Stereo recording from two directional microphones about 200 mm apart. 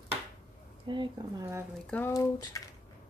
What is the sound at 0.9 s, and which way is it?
Speech, 25° right (ahead or behind).